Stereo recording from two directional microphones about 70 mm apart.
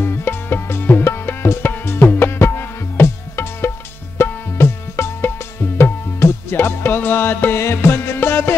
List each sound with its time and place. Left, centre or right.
0.0 s tabla: left
2.1 s music: left
4.2 s tabla: left